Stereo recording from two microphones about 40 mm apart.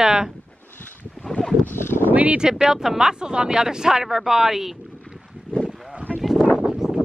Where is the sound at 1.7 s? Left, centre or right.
Left.